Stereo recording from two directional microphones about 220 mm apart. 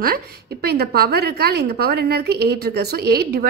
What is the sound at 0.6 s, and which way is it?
A woman's voice, 45° right (ahead or behind).